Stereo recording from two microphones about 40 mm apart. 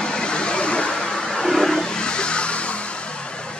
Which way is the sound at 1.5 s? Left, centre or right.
Centre.